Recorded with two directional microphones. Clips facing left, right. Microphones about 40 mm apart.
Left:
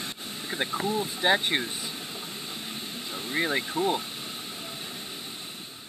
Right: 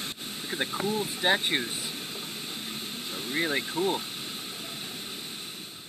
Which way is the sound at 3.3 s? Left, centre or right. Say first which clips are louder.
Left 1 dB; centre.